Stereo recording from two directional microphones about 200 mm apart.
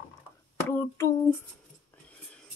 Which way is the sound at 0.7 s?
10° left (ahead or behind).